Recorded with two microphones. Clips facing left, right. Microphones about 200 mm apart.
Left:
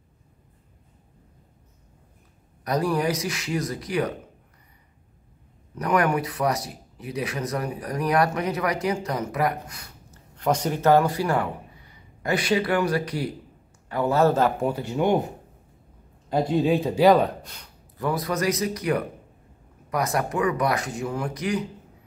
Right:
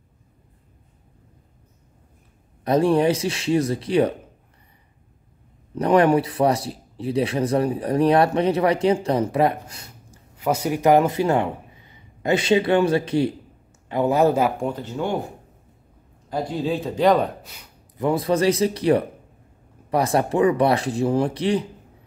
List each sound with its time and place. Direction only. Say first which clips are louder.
2.6 s speech: right 6 dB; 25° right (ahead or behind)
5.8 s speech: right 6 dB; 30° right (ahead or behind)
10.1 s a man's voice: right 1 dB; 5° right (ahead or behind)
14.6 s speech: left 2 dB; 10° left (ahead or behind)
17.9 s speech: right 6 dB; 25° right (ahead or behind)